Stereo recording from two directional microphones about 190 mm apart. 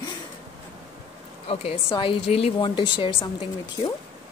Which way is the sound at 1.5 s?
30° left (ahead or behind).